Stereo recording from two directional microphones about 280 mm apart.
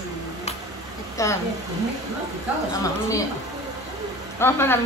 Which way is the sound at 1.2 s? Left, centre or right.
Centre.